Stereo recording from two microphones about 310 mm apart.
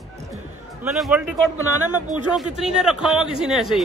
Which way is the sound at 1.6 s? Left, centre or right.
Right.